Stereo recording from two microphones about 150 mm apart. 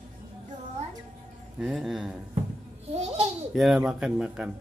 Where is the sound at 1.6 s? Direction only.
Centre (ahead or behind).